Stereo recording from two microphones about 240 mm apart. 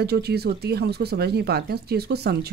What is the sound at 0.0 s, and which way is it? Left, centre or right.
Speech, right.